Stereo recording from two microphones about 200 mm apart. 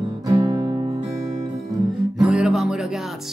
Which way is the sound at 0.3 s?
20° right (ahead or behind).